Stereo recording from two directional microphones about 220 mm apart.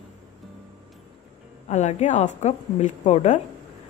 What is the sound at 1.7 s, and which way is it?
Speech, 30° left (ahead or behind).